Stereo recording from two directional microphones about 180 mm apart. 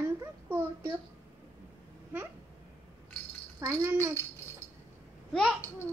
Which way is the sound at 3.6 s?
15° right (ahead or behind).